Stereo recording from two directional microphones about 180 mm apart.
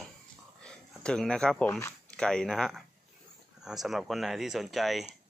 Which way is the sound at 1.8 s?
5° left (ahead or behind).